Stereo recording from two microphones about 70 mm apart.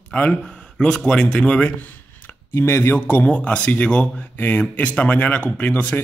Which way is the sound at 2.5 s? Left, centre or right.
Left.